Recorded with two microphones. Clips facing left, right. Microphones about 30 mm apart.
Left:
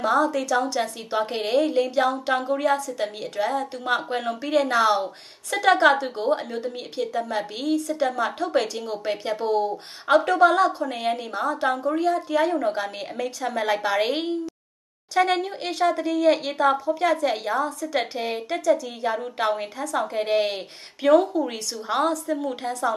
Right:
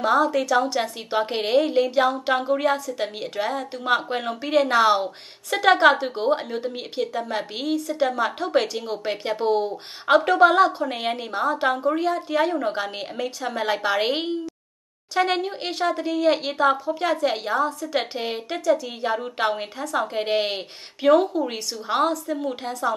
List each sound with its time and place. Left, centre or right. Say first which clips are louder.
0.0 s a woman's voice: right 2 dB; centre